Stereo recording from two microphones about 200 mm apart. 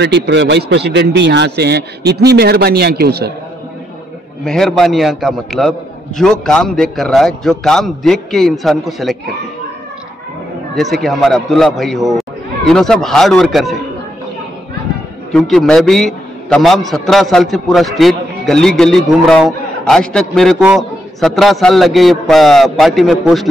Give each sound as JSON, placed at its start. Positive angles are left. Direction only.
{"t": 0.0, "sound": "a man's voice", "side_deg": -60}
{"t": 4.5, "sound": "a man's voice", "side_deg": 0}
{"t": 10.7, "sound": "a man's voice", "side_deg": 0}
{"t": 15.3, "sound": "a man's voice", "side_deg": 0}